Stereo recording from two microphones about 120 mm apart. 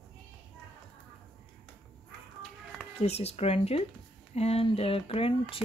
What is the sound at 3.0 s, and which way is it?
Speech, 60° left (ahead or behind).